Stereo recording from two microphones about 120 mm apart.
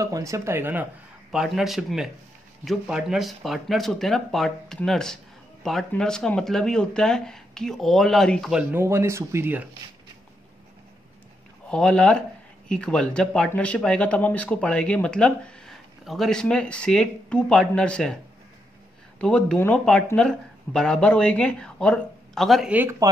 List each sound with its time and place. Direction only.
0.0 s speech: 25° right (ahead or behind)
1.3 s speech: 5° right (ahead or behind)
8.7 s speech: 20° right (ahead or behind)
11.7 s speech: 5° left (ahead or behind)
22.7 s speech: 15° right (ahead or behind)